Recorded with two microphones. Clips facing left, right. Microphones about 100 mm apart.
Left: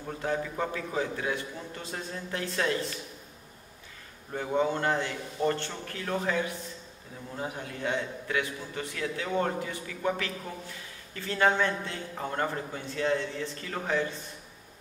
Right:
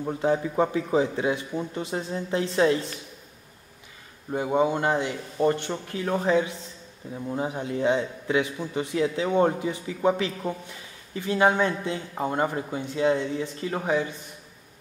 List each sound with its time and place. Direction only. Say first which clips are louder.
0.0 s a man's voice: right 7 dB; 20° right (ahead or behind)
4.3 s a man's voice: right 5 dB; 20° right (ahead or behind)